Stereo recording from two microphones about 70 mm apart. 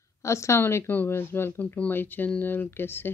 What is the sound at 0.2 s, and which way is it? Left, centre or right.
Speech, left.